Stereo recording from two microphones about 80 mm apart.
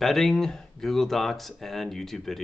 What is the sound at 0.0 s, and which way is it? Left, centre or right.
Speech, centre.